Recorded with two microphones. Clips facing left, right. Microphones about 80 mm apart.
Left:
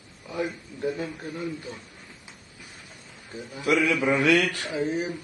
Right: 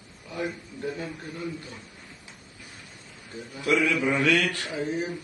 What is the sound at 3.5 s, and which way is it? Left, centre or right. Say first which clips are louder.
A man's voice: left 1 dB; centre.